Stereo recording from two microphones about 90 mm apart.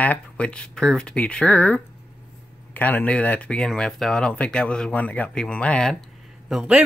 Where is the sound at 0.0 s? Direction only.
15° left (ahead or behind).